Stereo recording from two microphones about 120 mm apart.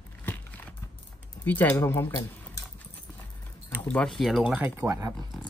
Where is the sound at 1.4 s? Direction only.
15° left (ahead or behind).